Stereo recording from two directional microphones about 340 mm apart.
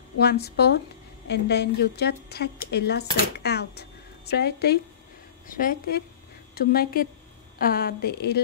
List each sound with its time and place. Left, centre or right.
0.2 s speech: left